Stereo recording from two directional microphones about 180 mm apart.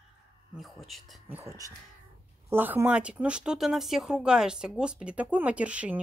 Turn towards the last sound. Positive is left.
turn(degrees=-5)  # may be behind; listen again after turning